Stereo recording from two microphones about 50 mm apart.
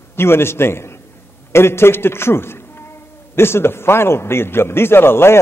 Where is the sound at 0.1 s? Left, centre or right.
Left.